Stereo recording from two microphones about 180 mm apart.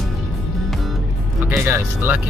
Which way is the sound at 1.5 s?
10° right (ahead or behind).